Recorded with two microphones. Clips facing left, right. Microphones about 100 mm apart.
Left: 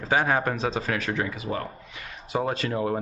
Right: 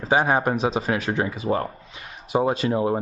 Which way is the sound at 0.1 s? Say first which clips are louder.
Right 4 dB; 20° right (ahead or behind).